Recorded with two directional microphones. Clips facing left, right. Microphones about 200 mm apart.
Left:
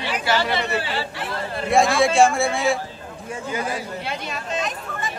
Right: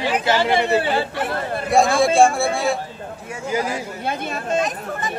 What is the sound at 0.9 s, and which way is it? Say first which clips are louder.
Chatter: right 6 dB; 50° right (ahead or behind).